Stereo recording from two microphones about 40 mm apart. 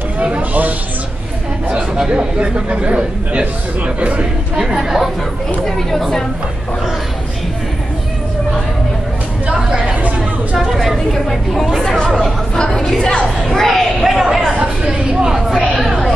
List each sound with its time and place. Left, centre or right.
0.4 s a sound: right
2.0 s a man's voice: right
4.6 s speech: centre
5.7 s a woman's voice: centre
9.5 s chatter: centre
10.8 s speech: centre
12.5 s a woman's voice: centre
13.6 s speech: centre
14.0 s speech: centre
14.9 s speech: centre
15.5 s speech: centre